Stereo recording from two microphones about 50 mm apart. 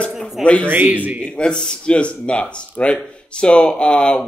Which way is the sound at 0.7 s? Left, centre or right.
Right.